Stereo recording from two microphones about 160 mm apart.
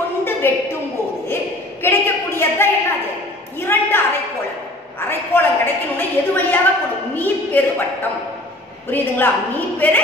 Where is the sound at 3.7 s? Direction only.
10° left (ahead or behind).